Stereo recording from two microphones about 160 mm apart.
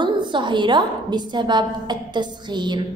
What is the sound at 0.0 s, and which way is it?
A woman's voice, 30° right (ahead or behind).